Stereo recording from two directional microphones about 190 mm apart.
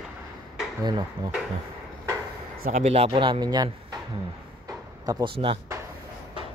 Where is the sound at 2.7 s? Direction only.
35° right (ahead or behind).